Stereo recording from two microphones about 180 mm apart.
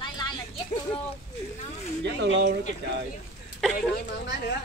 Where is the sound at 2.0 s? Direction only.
75° right (ahead or behind).